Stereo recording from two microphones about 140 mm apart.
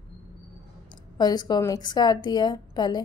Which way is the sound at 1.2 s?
30° left (ahead or behind).